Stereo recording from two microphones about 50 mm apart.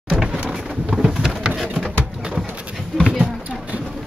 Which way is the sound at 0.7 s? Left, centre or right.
Centre.